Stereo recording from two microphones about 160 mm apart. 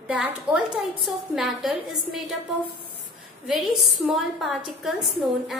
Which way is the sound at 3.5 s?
Centre (ahead or behind).